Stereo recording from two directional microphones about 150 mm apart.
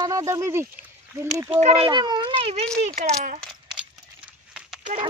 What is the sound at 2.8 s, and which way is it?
Speech, 60° right (ahead or behind).